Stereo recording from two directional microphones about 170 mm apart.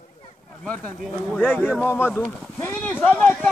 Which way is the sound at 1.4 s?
10° left (ahead or behind).